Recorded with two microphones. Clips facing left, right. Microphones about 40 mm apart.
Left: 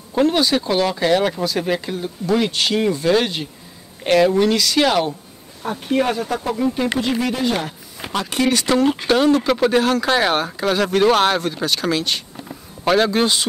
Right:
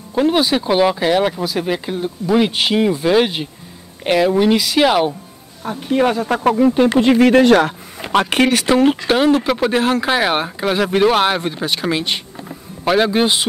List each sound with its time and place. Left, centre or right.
0.1 s a sound: centre
0.4 s speech: centre
5.6 s speech: centre
6.1 s speech: right
7.2 s speech: right
8.1 s speech: right
8.6 s speech: right
12.8 s speech: centre